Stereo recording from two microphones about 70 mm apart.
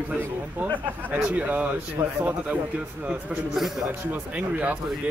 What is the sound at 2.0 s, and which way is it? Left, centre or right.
Speech, right.